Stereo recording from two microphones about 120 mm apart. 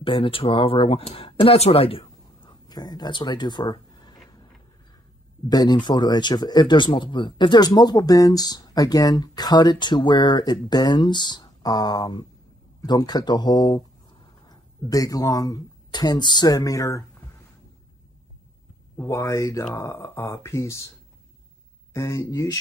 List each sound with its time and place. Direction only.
0.0 s speech: 45° left (ahead or behind)
2.5 s a sound: 35° left (ahead or behind)
5.5 s speech: 35° left (ahead or behind)
18.9 s speech: 25° left (ahead or behind)
21.9 s speech: 25° left (ahead or behind)